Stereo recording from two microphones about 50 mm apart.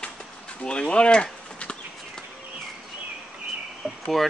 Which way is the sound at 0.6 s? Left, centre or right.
Centre.